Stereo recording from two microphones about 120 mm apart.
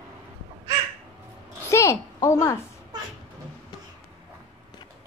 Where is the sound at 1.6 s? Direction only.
25° left (ahead or behind).